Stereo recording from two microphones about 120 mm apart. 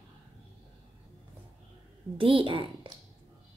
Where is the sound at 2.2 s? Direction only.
45° right (ahead or behind).